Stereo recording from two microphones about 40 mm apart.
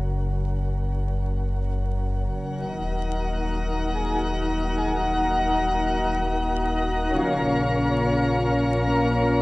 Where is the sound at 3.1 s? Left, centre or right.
Centre.